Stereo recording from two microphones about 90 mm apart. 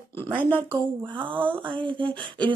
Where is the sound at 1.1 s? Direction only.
70° right (ahead or behind).